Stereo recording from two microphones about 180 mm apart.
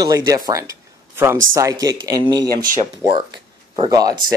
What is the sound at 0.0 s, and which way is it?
Speech, 20° right (ahead or behind).